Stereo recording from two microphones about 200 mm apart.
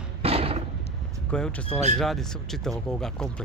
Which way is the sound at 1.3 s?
5° left (ahead or behind).